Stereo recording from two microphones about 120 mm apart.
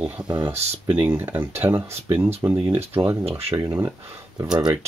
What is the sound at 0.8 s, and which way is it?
Speech, 20° right (ahead or behind).